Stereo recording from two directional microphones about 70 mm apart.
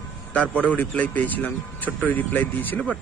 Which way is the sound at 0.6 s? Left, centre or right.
Left.